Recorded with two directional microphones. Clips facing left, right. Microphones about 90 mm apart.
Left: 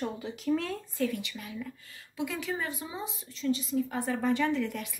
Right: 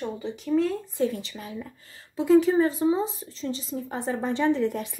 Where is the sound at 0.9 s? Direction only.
30° right (ahead or behind).